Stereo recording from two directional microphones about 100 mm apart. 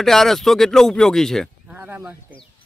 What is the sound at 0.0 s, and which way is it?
Speech, 5° left (ahead or behind).